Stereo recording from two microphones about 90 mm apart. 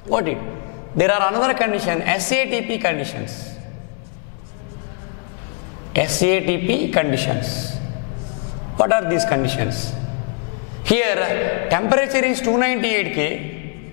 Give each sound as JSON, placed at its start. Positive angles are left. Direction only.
{"t": 0.1, "sound": "a man's voice", "side_deg": 10}
{"t": 5.9, "sound": "a man's voice", "side_deg": 10}
{"t": 8.7, "sound": "a man's voice", "side_deg": 10}
{"t": 10.9, "sound": "a man's voice", "side_deg": 10}